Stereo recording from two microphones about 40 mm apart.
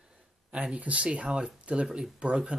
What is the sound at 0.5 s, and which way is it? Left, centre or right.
Speech, right.